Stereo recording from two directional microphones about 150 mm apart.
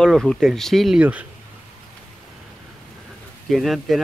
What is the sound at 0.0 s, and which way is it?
Speech, 5° left (ahead or behind).